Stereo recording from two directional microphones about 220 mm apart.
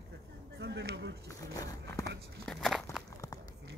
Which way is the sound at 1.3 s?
15° left (ahead or behind).